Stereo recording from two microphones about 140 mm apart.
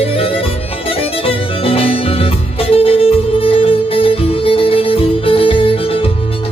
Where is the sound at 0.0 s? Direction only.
40° left (ahead or behind).